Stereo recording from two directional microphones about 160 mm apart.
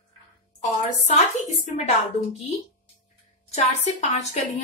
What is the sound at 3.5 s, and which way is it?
Speech, 45° left (ahead or behind).